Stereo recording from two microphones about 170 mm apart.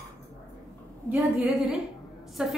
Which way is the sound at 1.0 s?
15° right (ahead or behind).